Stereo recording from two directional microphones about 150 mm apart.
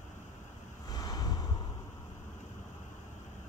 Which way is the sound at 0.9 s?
25° left (ahead or behind).